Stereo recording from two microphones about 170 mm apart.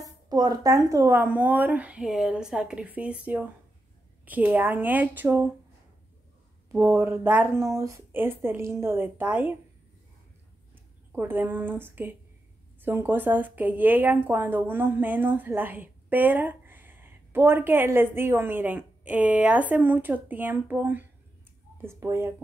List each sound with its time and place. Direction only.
0.0 s a woman's voice: 20° right (ahead or behind)
6.7 s a woman's voice: 15° right (ahead or behind)
11.1 s a woman's voice: 10° right (ahead or behind)